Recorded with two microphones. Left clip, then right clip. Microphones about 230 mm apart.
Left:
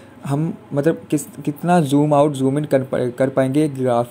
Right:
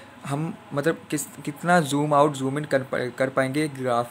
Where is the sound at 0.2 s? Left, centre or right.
Centre.